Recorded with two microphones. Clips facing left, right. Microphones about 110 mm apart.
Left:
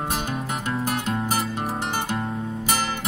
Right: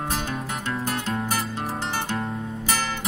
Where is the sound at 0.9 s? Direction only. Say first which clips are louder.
Left 1 dB; 5° left (ahead or behind).